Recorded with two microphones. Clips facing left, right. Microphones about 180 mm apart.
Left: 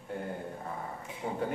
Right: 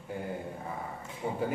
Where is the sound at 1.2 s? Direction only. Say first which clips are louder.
Right 2 dB; 10° right (ahead or behind).